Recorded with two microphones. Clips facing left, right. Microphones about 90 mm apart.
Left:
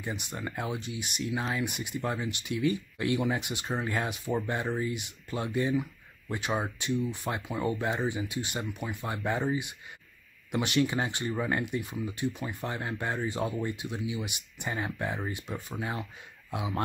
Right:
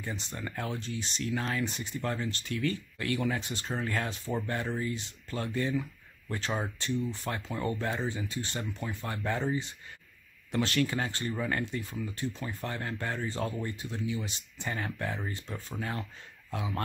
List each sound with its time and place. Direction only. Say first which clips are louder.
0.0 s speech: left 2 dB; 15° left (ahead or behind)